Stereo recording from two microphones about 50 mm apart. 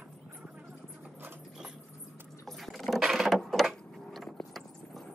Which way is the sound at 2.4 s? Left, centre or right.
Centre.